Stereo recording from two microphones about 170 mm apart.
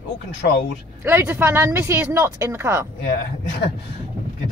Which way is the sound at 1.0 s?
15° right (ahead or behind).